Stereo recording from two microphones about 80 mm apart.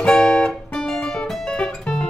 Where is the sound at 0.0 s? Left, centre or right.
Centre.